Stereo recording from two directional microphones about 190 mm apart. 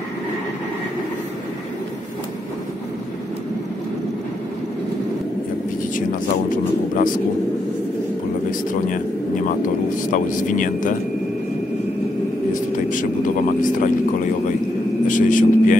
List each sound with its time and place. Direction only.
8.5 s speech: 45° left (ahead or behind)
12.9 s speech: 45° left (ahead or behind)
15.0 s speech: 45° left (ahead or behind)